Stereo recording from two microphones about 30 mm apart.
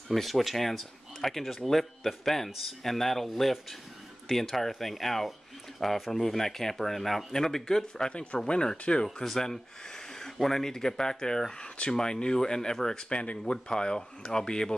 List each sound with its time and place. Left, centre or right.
0.1 s speech: centre; by 8.1 s left
8.1 s speech: left
8.4 s speech: left
9.0 s speech: centre
11.5 s speech: left
12.9 s speech: left
13.7 s speech: left